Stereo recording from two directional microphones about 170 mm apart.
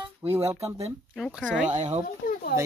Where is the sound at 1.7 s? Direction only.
40° right (ahead or behind).